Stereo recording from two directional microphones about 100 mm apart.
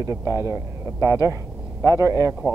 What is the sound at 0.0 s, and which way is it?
Speech, 30° right (ahead or behind).